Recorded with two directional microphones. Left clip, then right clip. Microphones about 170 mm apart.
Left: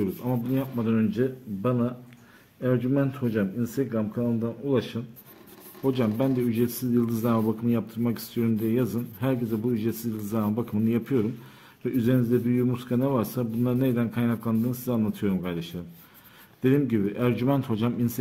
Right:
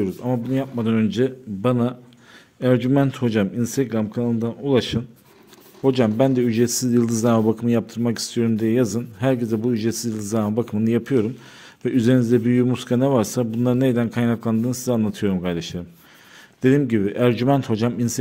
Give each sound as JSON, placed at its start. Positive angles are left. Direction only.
{"t": 0.0, "sound": "speech", "side_deg": -40}
{"t": 5.9, "sound": "speech", "side_deg": -40}